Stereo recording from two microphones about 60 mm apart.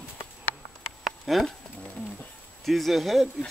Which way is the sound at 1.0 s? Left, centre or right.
Centre.